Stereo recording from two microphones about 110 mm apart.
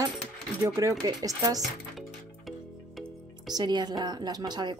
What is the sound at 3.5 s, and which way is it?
A woman's voice, 40° right (ahead or behind).